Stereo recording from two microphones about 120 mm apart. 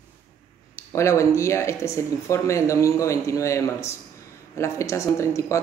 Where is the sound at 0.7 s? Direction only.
25° left (ahead or behind).